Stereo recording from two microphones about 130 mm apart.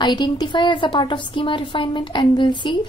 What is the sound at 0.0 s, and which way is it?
A woman's voice, 35° left (ahead or behind).